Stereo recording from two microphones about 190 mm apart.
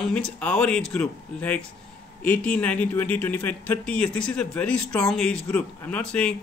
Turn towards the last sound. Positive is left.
turn(degrees=5)  # may be behind; listen again after turning